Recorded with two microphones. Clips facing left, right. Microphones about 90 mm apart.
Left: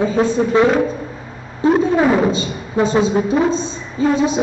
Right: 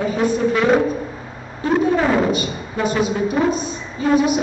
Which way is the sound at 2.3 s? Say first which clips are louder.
Left 2 dB; 25° left (ahead or behind).